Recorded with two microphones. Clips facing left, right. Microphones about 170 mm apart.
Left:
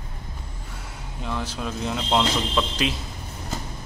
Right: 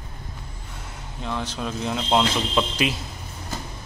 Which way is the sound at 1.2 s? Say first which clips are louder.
Right 1 dB; 5° left (ahead or behind).